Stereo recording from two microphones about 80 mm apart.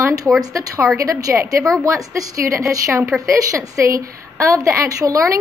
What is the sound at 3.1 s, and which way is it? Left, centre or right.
Speech, centre.